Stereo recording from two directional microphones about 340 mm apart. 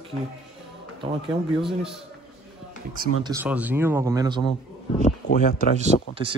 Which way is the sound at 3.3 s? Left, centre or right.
Centre.